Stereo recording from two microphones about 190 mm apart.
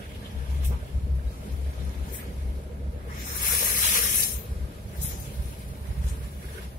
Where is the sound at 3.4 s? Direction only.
50° left (ahead or behind).